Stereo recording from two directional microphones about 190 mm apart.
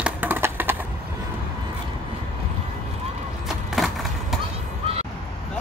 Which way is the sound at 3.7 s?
Centre (ahead or behind).